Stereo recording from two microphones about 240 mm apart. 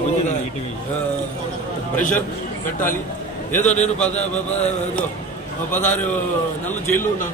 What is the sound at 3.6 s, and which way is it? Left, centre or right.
Speech, left.